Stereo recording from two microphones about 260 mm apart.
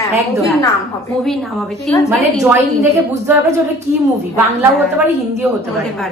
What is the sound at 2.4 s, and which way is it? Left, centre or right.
Speech, centre.